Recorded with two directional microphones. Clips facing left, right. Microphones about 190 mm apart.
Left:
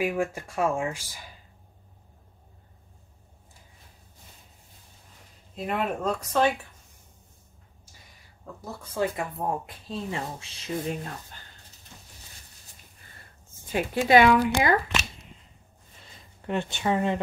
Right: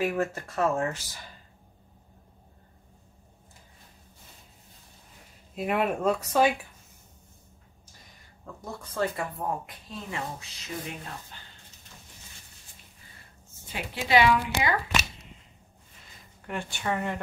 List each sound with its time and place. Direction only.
0.0 s speech: 10° left (ahead or behind)
5.6 s speech: centre (ahead or behind)
8.9 s speech: 15° left (ahead or behind)
9.8 s speech: 30° left (ahead or behind)
13.7 s speech: 50° left (ahead or behind)
16.4 s speech: 20° left (ahead or behind)